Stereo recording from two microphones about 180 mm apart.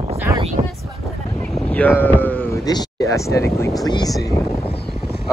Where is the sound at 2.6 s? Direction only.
20° left (ahead or behind).